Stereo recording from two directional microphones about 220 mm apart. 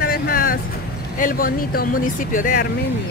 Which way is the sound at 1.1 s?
40° left (ahead or behind).